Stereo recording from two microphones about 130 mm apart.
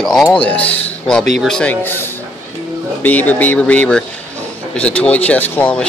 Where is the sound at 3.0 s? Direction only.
10° left (ahead or behind).